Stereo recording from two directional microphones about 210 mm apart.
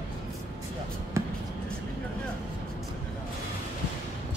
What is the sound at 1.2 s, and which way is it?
Basketball bounce, 15° right (ahead or behind).